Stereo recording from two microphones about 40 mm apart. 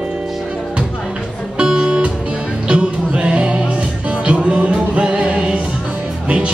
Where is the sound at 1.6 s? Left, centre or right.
Right.